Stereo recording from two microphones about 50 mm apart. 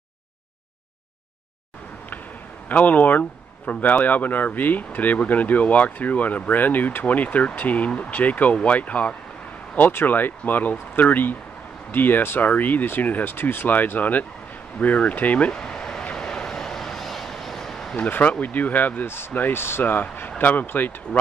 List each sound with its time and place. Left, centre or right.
2.7 s speech: left
9.8 s speech: left
15.5 s a sound: centre
16.0 s vehicle: centre
18.4 s speech: left
19.5 s speech: left